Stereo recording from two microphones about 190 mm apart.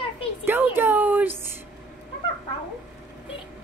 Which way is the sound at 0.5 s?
10° right (ahead or behind).